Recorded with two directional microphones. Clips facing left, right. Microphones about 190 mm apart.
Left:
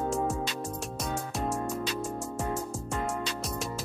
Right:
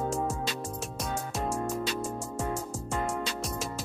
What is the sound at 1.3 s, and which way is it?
Music, centre (ahead or behind).